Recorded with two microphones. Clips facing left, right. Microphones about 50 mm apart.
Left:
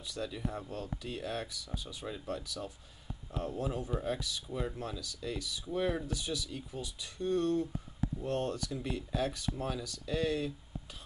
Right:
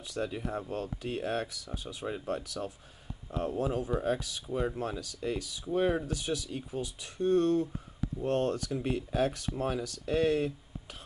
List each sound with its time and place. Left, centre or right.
0.0 s speech: right
8.7 s speech: right